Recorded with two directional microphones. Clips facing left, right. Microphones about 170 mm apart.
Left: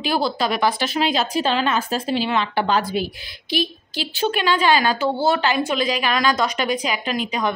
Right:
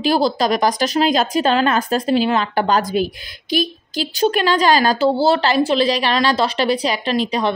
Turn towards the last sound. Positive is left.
turn(degrees=-35)  # may be behind; listen again after turning